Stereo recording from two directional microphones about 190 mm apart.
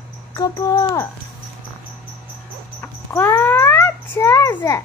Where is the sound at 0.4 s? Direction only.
15° left (ahead or behind).